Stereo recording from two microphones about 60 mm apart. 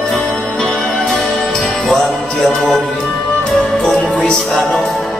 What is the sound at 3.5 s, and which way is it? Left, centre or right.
Music, left.